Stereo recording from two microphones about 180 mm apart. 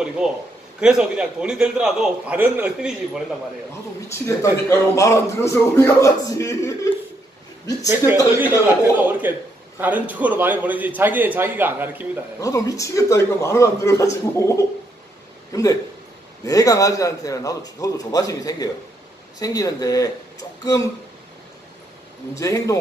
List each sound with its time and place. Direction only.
0.2 s a man's voice: 5° right (ahead or behind)
4.1 s a man's voice: 15° left (ahead or behind)
8.4 s a man's voice: 10° right (ahead or behind)
12.4 s a man's voice: 20° left (ahead or behind)
22.4 s a man's voice: 20° left (ahead or behind)